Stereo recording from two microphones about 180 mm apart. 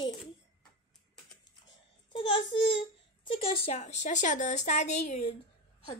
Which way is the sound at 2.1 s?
30° left (ahead or behind).